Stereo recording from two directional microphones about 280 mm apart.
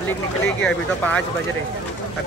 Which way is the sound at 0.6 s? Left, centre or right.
Centre.